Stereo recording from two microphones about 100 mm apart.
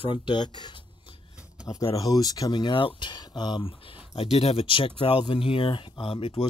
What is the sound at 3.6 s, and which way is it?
Speech, 70° left (ahead or behind).